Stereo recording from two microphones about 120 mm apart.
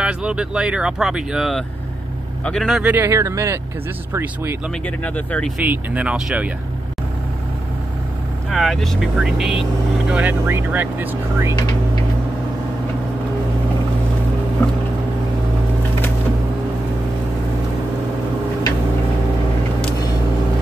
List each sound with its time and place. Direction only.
0.0 s a man's voice: 10° right (ahead or behind)
2.8 s speech: 15° right (ahead or behind)
3.1 s speech: 25° right (ahead or behind)
4.8 s speech: 10° left (ahead or behind)
5.6 s speech: 10° right (ahead or behind)
8.5 s speech: 5° left (ahead or behind); by 11.5 s 15° right (ahead or behind)